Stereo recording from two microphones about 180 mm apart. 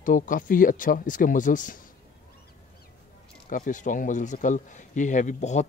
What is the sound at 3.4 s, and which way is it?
A man's voice, 50° left (ahead or behind).